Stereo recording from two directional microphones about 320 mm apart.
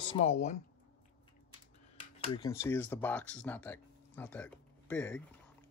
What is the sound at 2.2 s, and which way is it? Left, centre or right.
Speech, centre.